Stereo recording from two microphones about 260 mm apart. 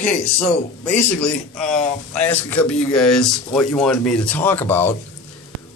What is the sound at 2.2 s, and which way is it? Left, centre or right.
Speech, centre.